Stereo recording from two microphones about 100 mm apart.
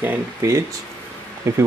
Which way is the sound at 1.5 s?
30° right (ahead or behind).